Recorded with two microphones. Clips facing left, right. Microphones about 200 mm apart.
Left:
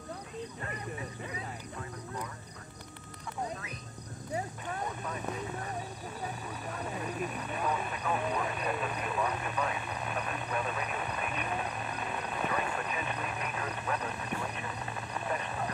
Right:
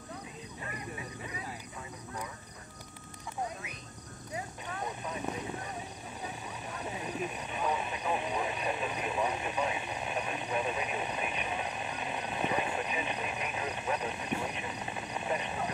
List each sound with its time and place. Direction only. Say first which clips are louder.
7.3 s vehicle: even; 20° right (ahead or behind)